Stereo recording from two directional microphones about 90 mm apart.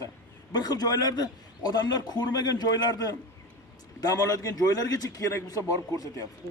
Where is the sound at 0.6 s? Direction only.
45° left (ahead or behind).